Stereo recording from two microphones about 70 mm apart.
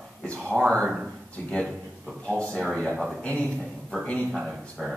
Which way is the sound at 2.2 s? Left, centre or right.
Centre.